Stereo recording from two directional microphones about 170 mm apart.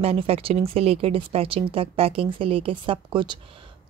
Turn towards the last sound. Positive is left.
turn(degrees=-30)  # may be behind; listen again after turning